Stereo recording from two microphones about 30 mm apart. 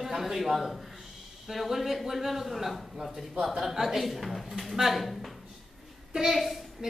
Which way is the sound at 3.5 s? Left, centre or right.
Centre.